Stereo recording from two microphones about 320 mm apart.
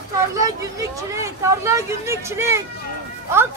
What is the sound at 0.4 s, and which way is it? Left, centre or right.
Speech, centre.